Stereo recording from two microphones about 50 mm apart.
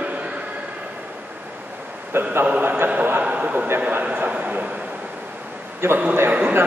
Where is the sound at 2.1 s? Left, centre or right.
Right.